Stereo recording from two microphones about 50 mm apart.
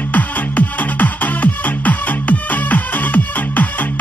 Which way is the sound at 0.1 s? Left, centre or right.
Left.